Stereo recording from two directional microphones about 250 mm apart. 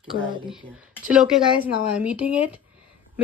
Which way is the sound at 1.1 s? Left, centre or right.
Centre.